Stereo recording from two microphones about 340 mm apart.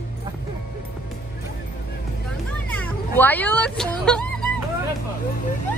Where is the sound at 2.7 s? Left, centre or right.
Centre.